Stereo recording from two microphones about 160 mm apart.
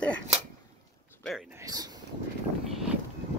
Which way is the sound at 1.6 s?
20° right (ahead or behind).